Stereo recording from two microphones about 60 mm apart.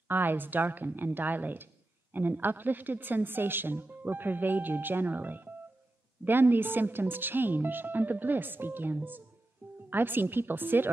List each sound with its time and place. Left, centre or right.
0.1 s a woman's voice: right